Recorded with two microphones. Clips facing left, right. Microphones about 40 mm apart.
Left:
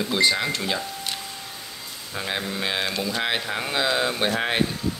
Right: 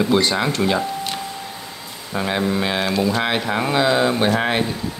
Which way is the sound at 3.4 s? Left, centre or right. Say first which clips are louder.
Right 7 dB; right.